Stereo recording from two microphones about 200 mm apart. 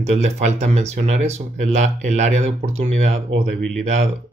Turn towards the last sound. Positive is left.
turn(degrees=-35)  # may be behind; listen again after turning